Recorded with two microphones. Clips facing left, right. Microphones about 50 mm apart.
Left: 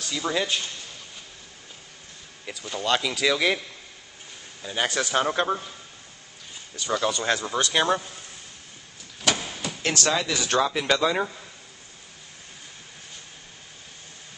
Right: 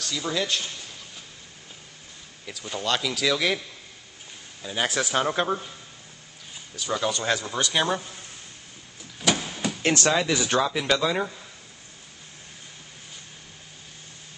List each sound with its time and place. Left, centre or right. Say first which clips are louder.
0.0 s speech: left 1 dB; centre
2.6 s speech: left 2 dB; centre
6.8 s speech: left 1 dB; centre
9.2 s vehicle: right 1 dB; centre
9.8 s speech: right 2 dB; right
10.5 s speech: left 3 dB; centre